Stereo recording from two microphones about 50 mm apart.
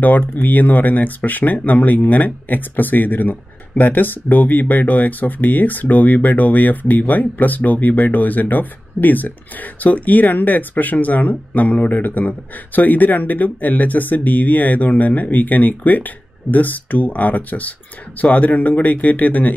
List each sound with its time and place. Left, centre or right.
0.2 s speech: left